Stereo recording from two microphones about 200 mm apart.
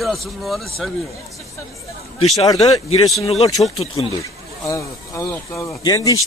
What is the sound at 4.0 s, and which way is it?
Speech, 15° left (ahead or behind).